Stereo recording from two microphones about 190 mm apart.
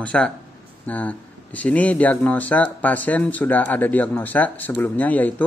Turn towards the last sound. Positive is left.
turn(degrees=10)  # may be behind; listen again after turning